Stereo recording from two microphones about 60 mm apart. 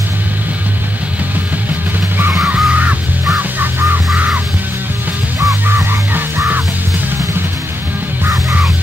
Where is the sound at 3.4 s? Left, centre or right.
Right.